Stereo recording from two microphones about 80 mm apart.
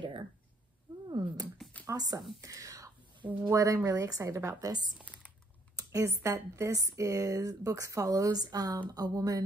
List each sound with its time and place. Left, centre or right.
1.1 s a sound: right
1.9 s speech: right
2.4 s whispering: right
3.4 s speech: right
5.8 s a sound: right
6.2 s speech: right